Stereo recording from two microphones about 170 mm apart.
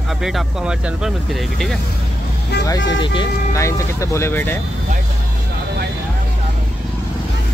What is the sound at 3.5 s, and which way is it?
Speech, 15° left (ahead or behind).